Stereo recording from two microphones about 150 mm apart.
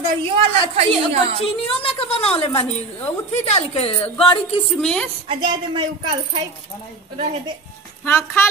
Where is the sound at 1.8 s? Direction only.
40° left (ahead or behind).